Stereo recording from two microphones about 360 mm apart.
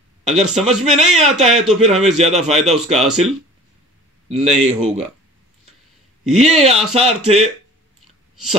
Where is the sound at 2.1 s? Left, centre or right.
Centre.